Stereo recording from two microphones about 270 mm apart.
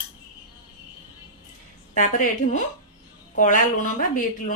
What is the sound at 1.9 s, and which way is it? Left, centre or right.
A woman's voice, left.